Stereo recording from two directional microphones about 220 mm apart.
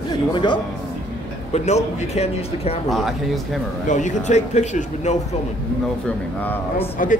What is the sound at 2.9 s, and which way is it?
Speech, centre (ahead or behind).